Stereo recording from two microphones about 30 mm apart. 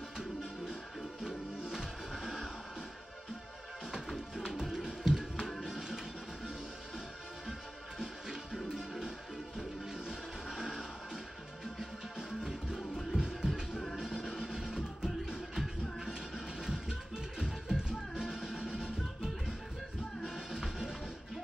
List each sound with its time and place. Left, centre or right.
1.2 s music: right
4.5 s music: right
8.0 s music: centre
10.0 s music: centre